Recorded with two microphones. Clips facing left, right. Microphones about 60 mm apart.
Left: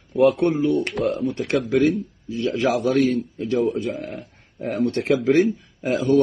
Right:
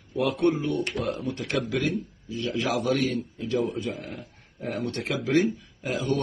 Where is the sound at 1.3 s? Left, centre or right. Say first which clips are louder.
Left 6 dB; centre.